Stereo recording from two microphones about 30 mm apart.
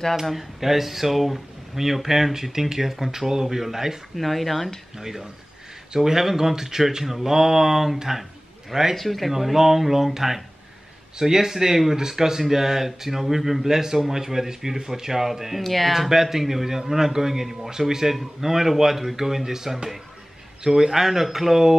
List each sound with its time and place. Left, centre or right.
0.1 s speech: centre
4.2 s speech: centre
4.9 s speech: centre
8.9 s speech: centre
9.3 s speech: centre
15.6 s speech: centre
15.9 s speech: centre